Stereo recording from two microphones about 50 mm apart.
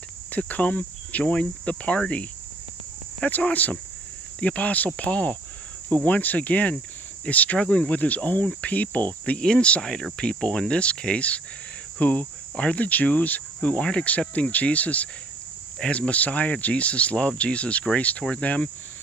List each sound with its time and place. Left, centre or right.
0.3 s speech: left
3.4 s cricket: left
4.4 s speech: left
7.5 s speech: centre
7.9 s cricket: left
9.4 s speech: centre
12.0 s cricket: left
12.8 s speech: left